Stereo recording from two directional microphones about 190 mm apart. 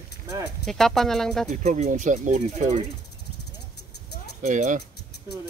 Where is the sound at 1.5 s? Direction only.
40° right (ahead or behind).